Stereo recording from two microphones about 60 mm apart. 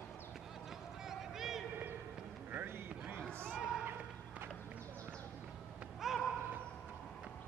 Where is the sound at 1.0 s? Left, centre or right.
Centre.